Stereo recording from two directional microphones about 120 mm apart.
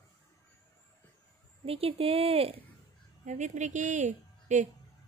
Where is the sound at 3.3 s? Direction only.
90° right.